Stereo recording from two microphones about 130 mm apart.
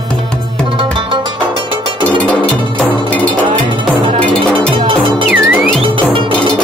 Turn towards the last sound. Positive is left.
turn(degrees=0)  # may be behind; listen again after turning